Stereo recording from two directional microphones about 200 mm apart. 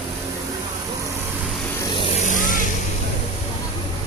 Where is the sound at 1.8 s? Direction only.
25° left (ahead or behind); by 2.6 s 40° left (ahead or behind).